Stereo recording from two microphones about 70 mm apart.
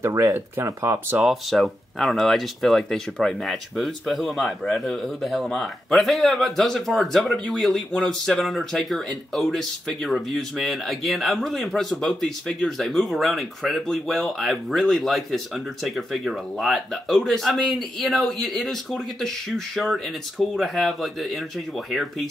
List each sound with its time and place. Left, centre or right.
0.1 s speech: right
1.2 s speech: centre